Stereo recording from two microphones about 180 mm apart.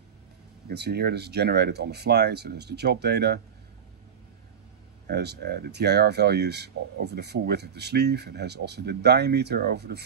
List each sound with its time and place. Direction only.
0.7 s speech: 65° right (ahead or behind)
5.0 s speech: 65° right (ahead or behind)